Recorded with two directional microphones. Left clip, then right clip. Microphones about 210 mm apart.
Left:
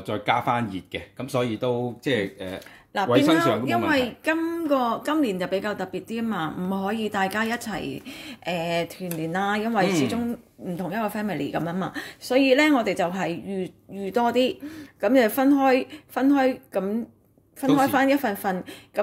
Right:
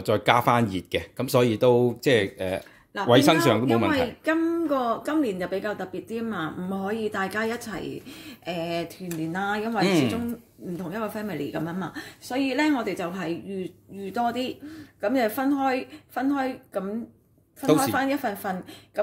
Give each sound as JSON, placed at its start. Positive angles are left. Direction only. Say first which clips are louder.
{"t": 0.0, "sound": "speech", "louder": "right 3 dB", "side_deg": -40}
{"t": 3.9, "sound": "a woman's voice", "louder": "left 1 dB", "side_deg": 35}